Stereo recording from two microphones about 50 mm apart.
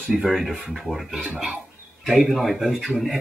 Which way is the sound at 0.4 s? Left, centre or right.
Centre.